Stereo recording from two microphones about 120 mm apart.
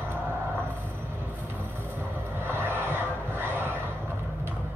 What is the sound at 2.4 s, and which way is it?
Vehicle, 20° right (ahead or behind).